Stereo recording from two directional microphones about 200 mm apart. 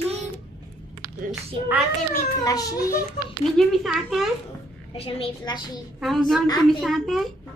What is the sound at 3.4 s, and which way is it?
Speech, centre (ahead or behind).